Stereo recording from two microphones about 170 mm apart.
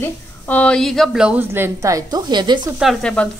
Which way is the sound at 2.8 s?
Centre (ahead or behind).